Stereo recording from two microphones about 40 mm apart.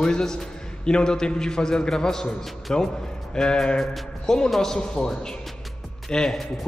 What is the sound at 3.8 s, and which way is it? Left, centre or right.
A man's voice, centre.